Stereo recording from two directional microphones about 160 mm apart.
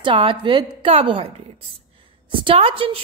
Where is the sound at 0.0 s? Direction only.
30° right (ahead or behind).